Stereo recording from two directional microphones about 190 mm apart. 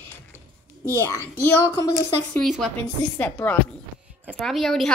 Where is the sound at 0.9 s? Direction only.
15° left (ahead or behind).